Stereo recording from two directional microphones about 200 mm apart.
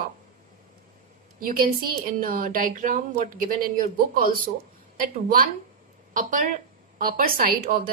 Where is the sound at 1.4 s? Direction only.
45° right (ahead or behind).